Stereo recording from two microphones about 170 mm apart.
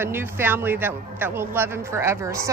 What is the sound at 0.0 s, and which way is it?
Speech, 15° right (ahead or behind).